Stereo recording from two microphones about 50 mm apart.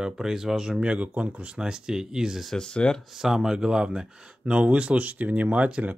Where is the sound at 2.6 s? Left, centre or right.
Centre.